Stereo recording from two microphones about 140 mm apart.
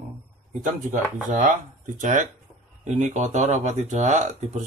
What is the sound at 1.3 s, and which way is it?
Speech, 70° right (ahead or behind).